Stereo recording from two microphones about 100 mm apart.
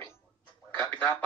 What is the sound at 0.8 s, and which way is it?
Speech, 30° left (ahead or behind).